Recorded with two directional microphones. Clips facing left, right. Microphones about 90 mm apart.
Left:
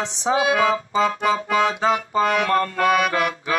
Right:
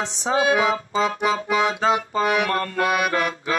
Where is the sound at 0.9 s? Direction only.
20° right (ahead or behind).